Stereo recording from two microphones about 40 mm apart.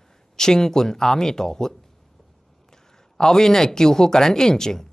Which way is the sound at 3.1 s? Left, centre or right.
Centre.